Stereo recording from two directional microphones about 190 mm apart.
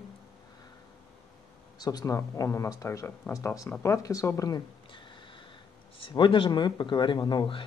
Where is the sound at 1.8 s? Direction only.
20° left (ahead or behind).